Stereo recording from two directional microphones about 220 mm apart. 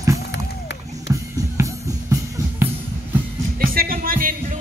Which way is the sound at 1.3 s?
15° right (ahead or behind).